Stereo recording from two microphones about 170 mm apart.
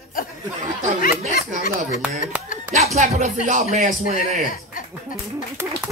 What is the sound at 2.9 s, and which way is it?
Speech, 45° right (ahead or behind).